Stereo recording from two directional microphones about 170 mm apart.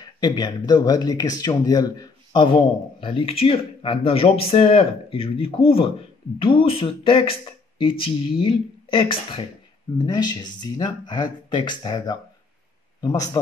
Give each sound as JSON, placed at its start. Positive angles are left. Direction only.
{"t": 0.2, "sound": "a man's voice", "side_deg": 25}